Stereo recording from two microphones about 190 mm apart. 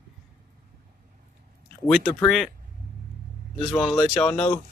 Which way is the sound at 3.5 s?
Centre (ahead or behind).